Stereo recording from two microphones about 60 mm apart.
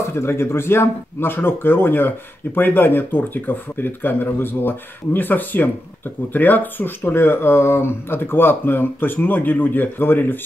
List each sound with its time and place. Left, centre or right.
0.1 s speech: left